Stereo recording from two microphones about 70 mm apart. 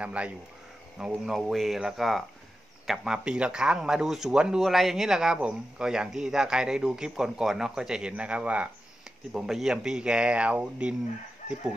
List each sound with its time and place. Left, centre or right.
0.0 s a man's voice: centre
1.3 s a man's voice: centre
4.6 s a man's voice: centre
9.3 s a man's voice: centre